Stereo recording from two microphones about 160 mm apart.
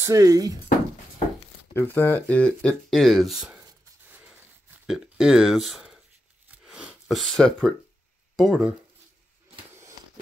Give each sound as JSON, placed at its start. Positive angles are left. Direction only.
{"t": 0.0, "sound": "speech", "side_deg": -20}
{"t": 1.7, "sound": "speech", "side_deg": 15}
{"t": 4.8, "sound": "speech", "side_deg": -5}
{"t": 6.6, "sound": "a sound", "side_deg": -5}
{"t": 8.4, "sound": "speech", "side_deg": -5}